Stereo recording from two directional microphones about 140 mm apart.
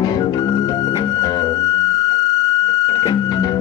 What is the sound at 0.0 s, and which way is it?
Music, 25° left (ahead or behind).